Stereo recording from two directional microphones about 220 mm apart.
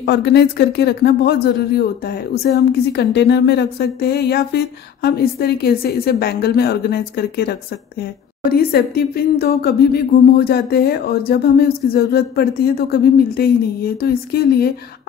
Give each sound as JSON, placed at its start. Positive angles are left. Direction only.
{"t": 0.0, "sound": "speech", "side_deg": 50}